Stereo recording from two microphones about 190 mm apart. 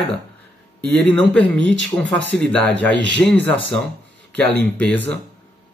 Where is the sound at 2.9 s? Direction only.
70° right (ahead or behind).